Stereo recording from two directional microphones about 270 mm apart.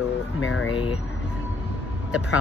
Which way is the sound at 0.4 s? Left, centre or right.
Left.